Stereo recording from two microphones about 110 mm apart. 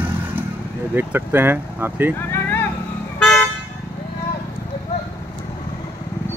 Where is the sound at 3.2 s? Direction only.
5° left (ahead or behind).